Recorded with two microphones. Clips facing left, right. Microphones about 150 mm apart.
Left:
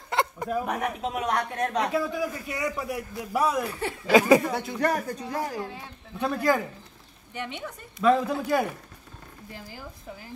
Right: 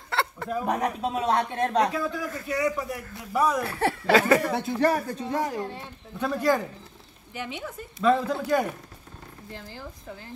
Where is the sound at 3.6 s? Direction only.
70° right (ahead or behind).